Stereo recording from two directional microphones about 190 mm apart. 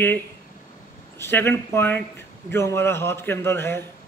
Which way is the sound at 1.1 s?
15° left (ahead or behind).